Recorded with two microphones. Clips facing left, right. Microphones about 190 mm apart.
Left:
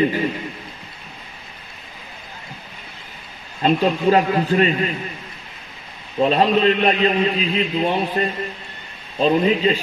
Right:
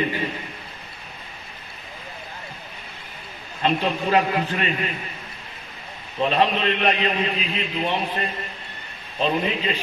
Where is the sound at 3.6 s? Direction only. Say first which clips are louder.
Left 5 dB; 40° left (ahead or behind).